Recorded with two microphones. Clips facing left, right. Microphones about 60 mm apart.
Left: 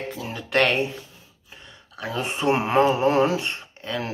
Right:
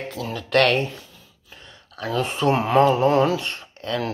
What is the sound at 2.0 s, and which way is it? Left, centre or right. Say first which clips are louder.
Speech: right 3 dB; centre.